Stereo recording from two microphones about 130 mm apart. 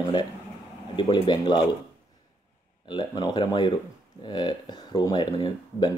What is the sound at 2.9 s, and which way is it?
Speech, 35° left (ahead or behind).